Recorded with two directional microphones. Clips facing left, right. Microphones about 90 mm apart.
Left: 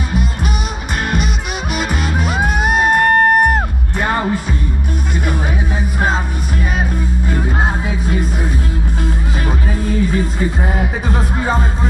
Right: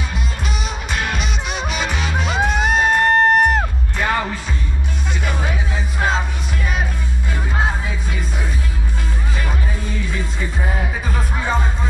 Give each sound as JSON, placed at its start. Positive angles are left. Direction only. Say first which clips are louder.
{"t": 1.7, "sound": "music", "louder": "left 5 dB", "side_deg": 5}
{"t": 2.8, "sound": "music", "louder": "left 3 dB", "side_deg": 50}
{"t": 4.1, "sound": "music", "louder": "left 4 dB", "side_deg": 25}
{"t": 9.8, "sound": "speech", "louder": "left 12 dB", "side_deg": 40}
{"t": 10.6, "sound": "a woman's voice", "louder": "left 4 dB", "side_deg": 15}
{"t": 11.1, "sound": "speech", "louder": "left 4 dB", "side_deg": 40}